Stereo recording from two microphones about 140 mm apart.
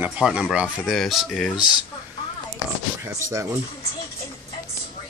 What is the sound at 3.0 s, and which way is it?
Speech, 20° right (ahead or behind).